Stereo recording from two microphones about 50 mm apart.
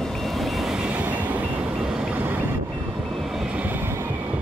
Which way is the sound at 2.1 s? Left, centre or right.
Right.